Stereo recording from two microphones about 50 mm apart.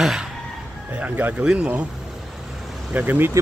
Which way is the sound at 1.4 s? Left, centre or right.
Centre.